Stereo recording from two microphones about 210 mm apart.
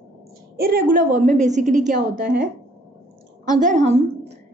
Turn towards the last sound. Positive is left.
turn(degrees=-30)  # may be behind; listen again after turning